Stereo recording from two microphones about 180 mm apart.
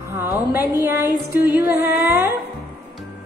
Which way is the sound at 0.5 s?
10° right (ahead or behind).